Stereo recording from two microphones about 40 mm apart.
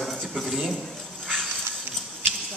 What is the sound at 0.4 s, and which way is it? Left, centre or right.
Speech, centre.